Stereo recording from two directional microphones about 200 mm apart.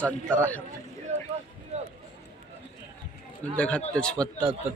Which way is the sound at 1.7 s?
35° right (ahead or behind).